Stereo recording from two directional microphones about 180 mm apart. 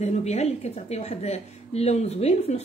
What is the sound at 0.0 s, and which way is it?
A woman's voice, 40° left (ahead or behind).